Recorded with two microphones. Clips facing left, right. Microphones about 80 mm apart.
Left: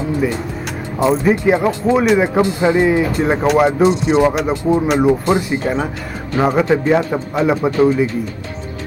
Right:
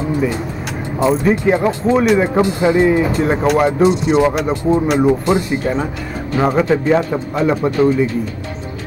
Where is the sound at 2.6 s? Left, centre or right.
Centre.